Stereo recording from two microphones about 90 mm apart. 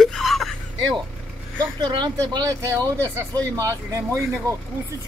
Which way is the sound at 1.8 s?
60° right (ahead or behind).